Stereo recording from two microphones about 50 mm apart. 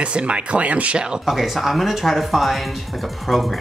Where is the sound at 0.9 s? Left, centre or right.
Centre.